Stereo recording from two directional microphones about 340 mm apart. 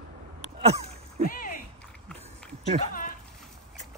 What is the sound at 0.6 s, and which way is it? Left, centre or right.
Speech, centre.